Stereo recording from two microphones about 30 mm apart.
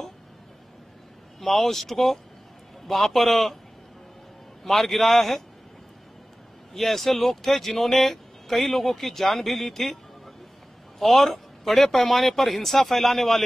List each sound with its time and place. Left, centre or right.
1.4 s a man's voice: centre
4.6 s speech: centre
6.7 s speech: centre